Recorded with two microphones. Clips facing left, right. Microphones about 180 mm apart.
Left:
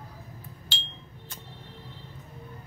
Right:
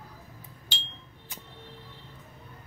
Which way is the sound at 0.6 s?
15° right (ahead or behind).